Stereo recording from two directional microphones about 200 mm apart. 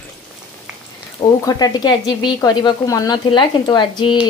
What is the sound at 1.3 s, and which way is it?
Frying, 15° left (ahead or behind).